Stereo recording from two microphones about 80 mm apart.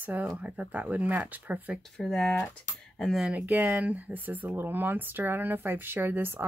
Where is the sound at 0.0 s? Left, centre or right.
Right.